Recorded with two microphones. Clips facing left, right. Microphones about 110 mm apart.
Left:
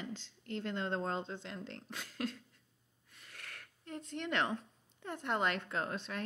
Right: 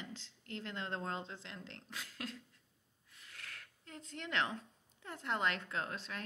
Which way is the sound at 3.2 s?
40° left (ahead or behind).